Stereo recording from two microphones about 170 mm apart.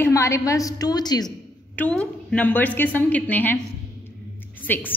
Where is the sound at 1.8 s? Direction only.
5° left (ahead or behind).